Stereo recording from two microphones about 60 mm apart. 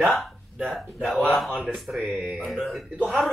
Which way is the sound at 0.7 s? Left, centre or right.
Centre.